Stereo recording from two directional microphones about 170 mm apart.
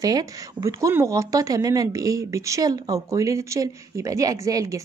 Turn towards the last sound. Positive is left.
turn(degrees=-20)  # may be behind; listen again after turning